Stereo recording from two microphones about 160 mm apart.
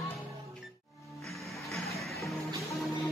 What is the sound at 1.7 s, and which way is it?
Music, centre (ahead or behind).